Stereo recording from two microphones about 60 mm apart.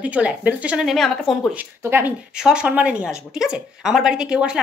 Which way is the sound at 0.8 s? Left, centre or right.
Centre.